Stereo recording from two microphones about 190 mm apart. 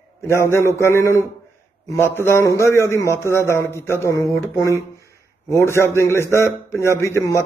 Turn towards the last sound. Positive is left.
turn(degrees=15)  # may be behind; listen again after turning